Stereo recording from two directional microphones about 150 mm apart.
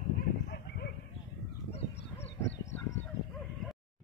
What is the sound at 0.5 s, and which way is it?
Bow-wow, 90° left.